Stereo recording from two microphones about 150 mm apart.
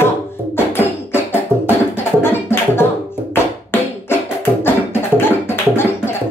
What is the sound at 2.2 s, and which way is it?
Beatboxing, 15° left (ahead or behind).